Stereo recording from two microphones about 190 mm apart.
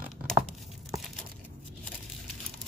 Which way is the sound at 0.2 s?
Centre (ahead or behind).